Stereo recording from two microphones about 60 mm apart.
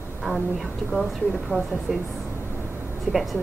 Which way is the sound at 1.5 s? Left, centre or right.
Right.